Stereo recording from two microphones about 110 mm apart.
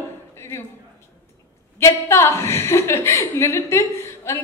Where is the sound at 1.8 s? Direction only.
25° left (ahead or behind).